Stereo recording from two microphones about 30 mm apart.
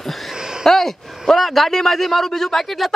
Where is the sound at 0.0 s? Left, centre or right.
Centre.